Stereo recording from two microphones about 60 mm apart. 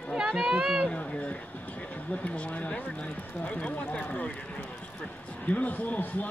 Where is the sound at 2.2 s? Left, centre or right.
Left.